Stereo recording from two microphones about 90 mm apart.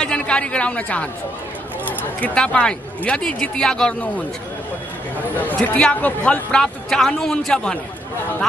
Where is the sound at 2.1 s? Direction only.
15° left (ahead or behind).